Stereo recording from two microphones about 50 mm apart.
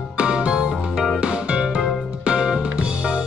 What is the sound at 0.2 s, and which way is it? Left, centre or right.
Music, right.